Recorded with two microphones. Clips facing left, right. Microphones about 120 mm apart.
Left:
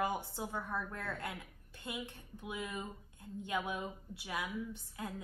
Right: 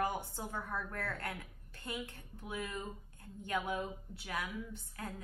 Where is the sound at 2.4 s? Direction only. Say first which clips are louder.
Even; 15° left (ahead or behind).